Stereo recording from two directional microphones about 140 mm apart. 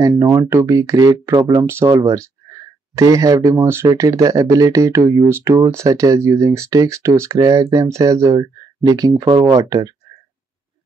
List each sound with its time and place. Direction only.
0.2 s speech: 20° right (ahead or behind)